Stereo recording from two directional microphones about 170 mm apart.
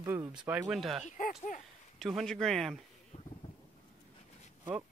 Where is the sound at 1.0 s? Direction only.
45° left (ahead or behind).